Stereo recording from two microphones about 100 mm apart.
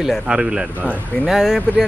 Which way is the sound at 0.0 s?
5° right (ahead or behind).